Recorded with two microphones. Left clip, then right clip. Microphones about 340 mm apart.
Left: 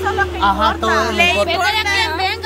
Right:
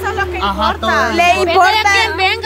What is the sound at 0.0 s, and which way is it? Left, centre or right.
Music, right.